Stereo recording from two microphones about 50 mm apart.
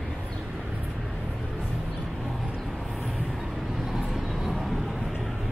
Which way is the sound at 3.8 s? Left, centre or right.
Centre.